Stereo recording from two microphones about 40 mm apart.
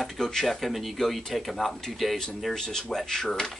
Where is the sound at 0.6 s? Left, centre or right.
Centre.